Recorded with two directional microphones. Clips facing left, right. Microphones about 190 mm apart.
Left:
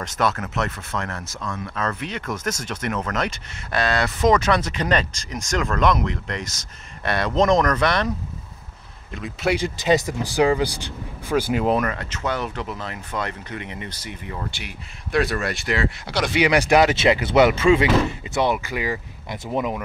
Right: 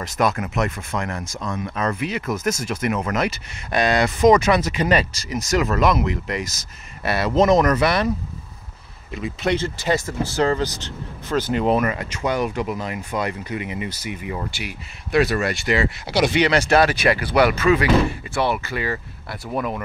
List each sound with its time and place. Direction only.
0.0 s speech: 10° right (ahead or behind)
9.1 s speech: centre (ahead or behind)
9.6 s speech: 15° left (ahead or behind); by 16.3 s 5° right (ahead or behind)
16.3 s speech: 15° left (ahead or behind)